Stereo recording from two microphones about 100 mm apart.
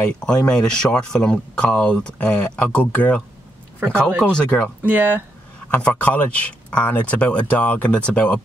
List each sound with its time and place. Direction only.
0.2 s speech: 10° left (ahead or behind)
4.2 s speech: 5° left (ahead or behind)
4.8 s speech: 20° right (ahead or behind)
5.7 s speech: 15° left (ahead or behind)